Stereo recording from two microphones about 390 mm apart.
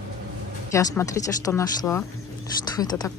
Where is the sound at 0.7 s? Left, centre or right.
Centre.